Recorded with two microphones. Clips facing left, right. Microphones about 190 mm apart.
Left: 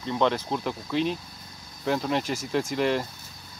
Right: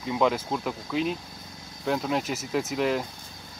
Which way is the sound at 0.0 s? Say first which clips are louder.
Even; 5° right (ahead or behind).